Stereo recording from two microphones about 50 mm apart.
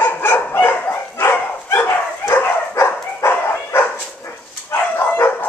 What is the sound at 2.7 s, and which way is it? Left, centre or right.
Dog, left.